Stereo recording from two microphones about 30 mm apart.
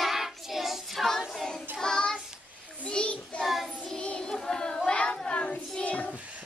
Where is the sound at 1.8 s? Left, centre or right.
Left.